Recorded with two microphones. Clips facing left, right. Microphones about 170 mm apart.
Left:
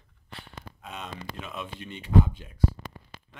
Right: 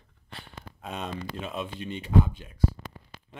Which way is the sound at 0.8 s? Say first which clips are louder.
Right 5 dB; 35° right (ahead or behind).